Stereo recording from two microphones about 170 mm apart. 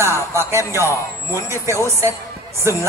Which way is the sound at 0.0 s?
15° right (ahead or behind).